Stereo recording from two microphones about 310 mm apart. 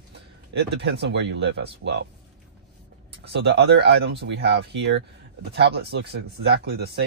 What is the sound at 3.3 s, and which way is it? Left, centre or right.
Speech, right.